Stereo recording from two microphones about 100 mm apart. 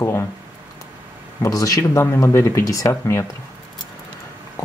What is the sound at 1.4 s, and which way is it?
Speech, 35° left (ahead or behind).